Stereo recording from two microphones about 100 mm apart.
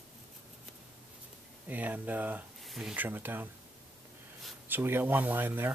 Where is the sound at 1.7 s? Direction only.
15° right (ahead or behind).